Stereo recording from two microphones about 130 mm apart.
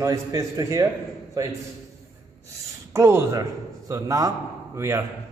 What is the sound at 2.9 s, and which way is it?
A man's voice, 20° right (ahead or behind).